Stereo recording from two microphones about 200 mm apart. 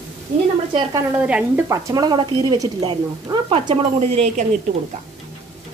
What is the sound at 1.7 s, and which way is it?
Speech, 20° right (ahead or behind).